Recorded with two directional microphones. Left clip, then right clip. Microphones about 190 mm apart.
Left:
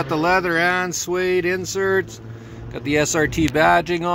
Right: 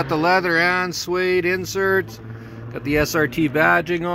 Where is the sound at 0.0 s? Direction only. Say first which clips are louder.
Right 1 dB; centre (ahead or behind).